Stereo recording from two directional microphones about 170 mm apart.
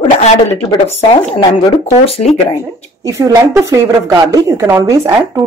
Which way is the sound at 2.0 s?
35° left (ahead or behind).